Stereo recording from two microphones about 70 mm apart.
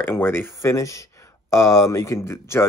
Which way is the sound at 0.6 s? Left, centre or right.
Left.